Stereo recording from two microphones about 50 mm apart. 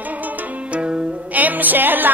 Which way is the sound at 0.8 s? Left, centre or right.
Centre.